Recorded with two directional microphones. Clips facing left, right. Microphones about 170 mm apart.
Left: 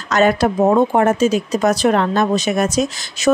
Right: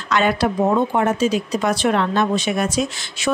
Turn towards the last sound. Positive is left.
turn(degrees=40)  # may be behind; listen again after turning